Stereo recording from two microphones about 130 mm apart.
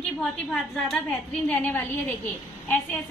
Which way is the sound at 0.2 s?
5° left (ahead or behind).